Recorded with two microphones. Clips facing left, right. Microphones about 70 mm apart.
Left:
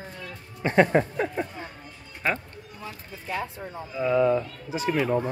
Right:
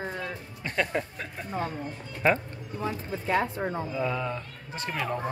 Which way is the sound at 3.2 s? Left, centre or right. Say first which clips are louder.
Right 5 dB; right.